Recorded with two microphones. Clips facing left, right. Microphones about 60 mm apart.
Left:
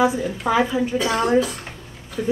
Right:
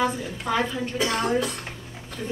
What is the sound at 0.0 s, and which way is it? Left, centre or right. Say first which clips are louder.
A woman's voice: left 6 dB; centre.